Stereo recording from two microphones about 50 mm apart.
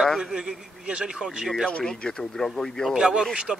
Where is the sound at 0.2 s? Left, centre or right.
Centre.